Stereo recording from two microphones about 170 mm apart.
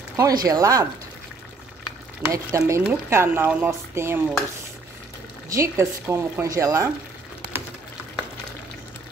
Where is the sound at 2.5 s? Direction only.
15° right (ahead or behind).